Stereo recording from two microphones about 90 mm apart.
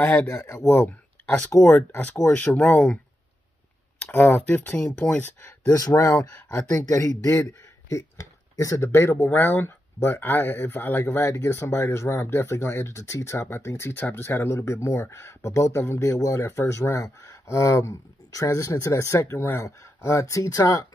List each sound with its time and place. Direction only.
0.3 s speech: 35° left (ahead or behind)
2.3 s speech: 20° left (ahead or behind)
4.0 s speech: 20° left (ahead or behind)
4.7 s speech: 5° left (ahead or behind)
5.2 s speech: 30° left (ahead or behind)